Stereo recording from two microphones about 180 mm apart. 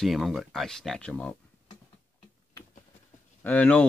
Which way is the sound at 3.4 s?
10° left (ahead or behind).